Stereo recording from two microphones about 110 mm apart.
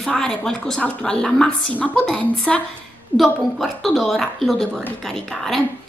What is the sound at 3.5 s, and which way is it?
A woman's voice, centre (ahead or behind).